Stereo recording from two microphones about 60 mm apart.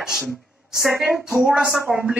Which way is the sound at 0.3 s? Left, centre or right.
Centre.